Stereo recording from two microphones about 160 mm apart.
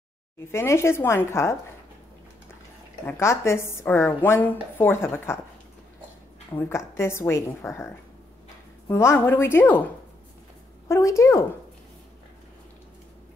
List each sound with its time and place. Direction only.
0.5 s speech: 15° left (ahead or behind)
3.1 s speech: 15° left (ahead or behind)
6.5 s speech: 15° left (ahead or behind)
10.9 s a woman's voice: 20° left (ahead or behind)